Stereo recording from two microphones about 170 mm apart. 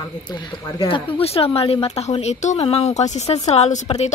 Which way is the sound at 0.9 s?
35° left (ahead or behind).